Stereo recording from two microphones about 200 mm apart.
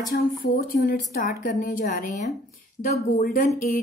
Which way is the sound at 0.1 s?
45° left (ahead or behind).